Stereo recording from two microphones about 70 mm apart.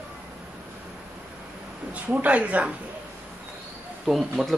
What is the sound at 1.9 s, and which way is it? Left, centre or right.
Speech, centre.